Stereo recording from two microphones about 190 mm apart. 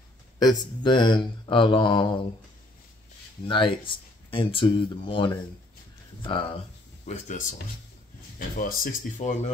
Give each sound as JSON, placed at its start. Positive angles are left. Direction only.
{"t": 0.4, "sound": "speech", "side_deg": 20}
{"t": 3.4, "sound": "speech", "side_deg": 25}
{"t": 7.1, "sound": "speech", "side_deg": 40}